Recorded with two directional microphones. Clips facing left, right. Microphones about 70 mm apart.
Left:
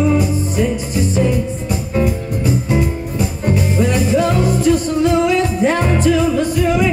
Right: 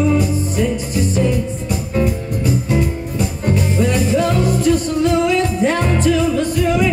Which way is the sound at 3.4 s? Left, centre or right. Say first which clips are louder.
Left 1 dB; centre.